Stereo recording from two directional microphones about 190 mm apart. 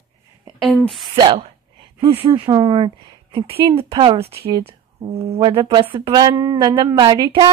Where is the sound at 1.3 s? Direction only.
25° right (ahead or behind).